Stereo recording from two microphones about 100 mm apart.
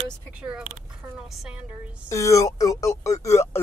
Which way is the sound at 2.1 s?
30° left (ahead or behind).